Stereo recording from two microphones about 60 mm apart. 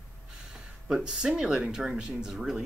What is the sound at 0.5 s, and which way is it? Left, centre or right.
Speech, centre.